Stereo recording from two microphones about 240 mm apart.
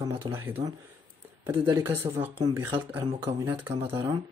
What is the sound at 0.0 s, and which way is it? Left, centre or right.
Speech, centre.